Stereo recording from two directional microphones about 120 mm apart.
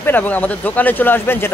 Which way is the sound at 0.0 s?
15° left (ahead or behind).